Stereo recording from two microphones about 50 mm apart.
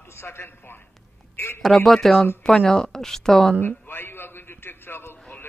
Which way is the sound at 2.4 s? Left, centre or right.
Centre.